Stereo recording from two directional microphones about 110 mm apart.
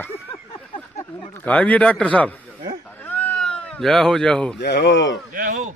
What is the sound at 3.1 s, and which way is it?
Cat, 15° left (ahead or behind).